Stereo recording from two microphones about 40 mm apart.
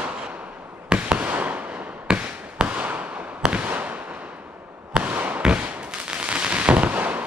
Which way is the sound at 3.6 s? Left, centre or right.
Right.